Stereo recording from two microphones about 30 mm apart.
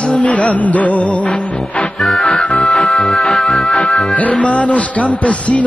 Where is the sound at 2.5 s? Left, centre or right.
Left.